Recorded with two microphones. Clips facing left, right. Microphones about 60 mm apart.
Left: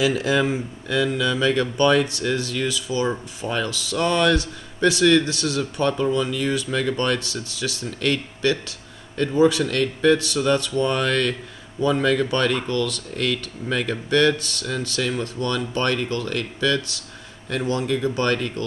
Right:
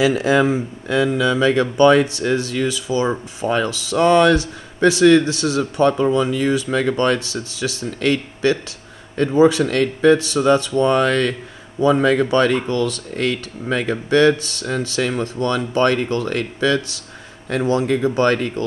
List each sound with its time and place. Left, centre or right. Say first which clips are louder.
0.0 s speech: right 5 dB; right